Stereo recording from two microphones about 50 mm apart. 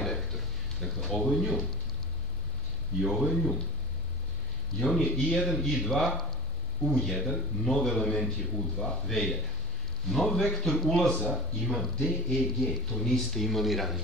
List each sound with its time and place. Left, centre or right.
0.0 s a sound: centre
3.0 s a man's voice: centre
4.7 s a man's voice: centre